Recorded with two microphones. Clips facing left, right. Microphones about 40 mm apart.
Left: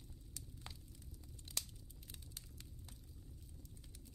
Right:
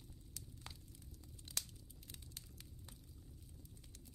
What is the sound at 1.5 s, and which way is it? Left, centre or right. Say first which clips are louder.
Crumpling: even; centre.